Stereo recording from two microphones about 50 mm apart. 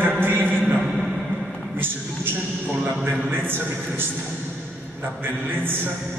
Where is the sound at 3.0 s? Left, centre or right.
Right.